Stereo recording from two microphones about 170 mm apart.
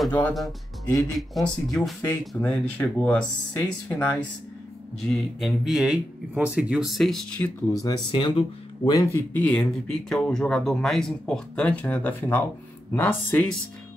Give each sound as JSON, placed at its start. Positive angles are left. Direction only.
{"t": 0.3, "sound": "speech", "side_deg": 0}
{"t": 7.8, "sound": "speech", "side_deg": 30}
{"t": 9.1, "sound": "speech", "side_deg": 10}